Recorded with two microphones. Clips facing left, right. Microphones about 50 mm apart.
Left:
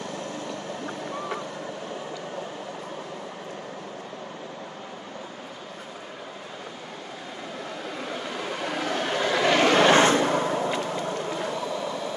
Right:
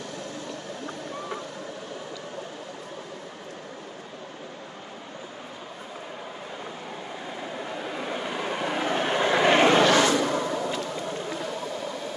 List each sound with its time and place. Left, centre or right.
7.8 s vehicle: centre
9.8 s vehicle: left